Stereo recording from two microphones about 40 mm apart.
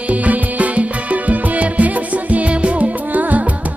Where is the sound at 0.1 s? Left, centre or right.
Right.